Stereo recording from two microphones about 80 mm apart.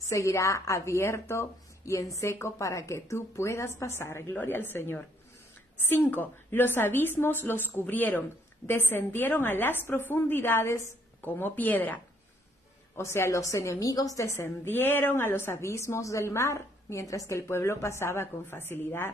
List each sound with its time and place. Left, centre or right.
0.1 s a woman's voice: left
12.9 s a woman's voice: left